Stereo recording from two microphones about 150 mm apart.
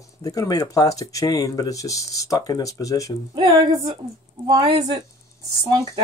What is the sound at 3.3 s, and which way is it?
A woman's voice, 30° right (ahead or behind).